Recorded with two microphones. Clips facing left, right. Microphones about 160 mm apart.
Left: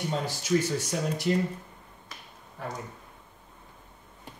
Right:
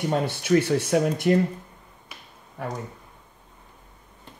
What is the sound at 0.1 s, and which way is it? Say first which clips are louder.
Speech: right 6 dB; 60° right (ahead or behind).